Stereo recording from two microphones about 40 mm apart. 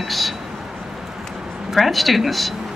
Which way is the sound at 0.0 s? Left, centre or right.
Centre.